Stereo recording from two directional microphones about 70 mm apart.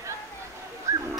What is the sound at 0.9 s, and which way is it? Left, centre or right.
Dog, right.